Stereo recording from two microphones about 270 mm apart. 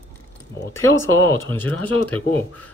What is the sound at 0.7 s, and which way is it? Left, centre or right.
Speech, centre.